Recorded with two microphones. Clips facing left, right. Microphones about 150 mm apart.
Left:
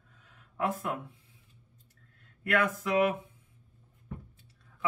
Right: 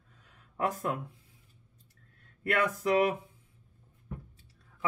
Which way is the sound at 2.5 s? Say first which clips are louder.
Even; 40° right (ahead or behind).